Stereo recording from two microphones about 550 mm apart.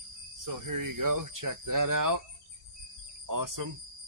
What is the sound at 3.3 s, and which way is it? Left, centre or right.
Speech, right.